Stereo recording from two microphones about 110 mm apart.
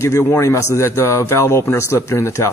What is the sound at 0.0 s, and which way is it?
A man's voice, 25° left (ahead or behind).